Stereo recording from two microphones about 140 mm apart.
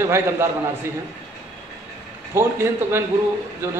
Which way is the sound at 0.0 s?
20° right (ahead or behind).